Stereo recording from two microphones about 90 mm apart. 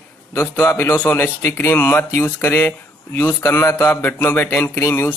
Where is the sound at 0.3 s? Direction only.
30° left (ahead or behind).